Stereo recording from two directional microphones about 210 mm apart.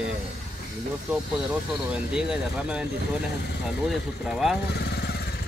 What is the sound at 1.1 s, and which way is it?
Speech, 5° right (ahead or behind).